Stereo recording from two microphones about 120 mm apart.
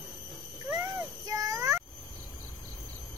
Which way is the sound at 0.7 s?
30° right (ahead or behind).